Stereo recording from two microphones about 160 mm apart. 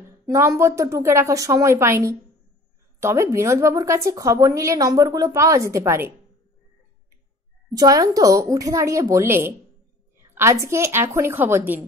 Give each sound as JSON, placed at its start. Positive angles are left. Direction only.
{"t": 0.3, "sound": "a woman's voice", "side_deg": -20}
{"t": 7.7, "sound": "a woman's voice", "side_deg": -20}